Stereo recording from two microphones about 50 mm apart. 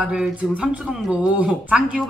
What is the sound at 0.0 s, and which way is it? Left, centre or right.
Speech, centre.